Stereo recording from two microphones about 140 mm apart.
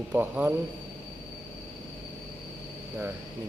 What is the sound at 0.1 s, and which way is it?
Speech, 15° right (ahead or behind).